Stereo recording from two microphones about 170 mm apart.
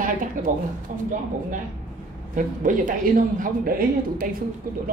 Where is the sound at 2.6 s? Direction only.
50° right (ahead or behind).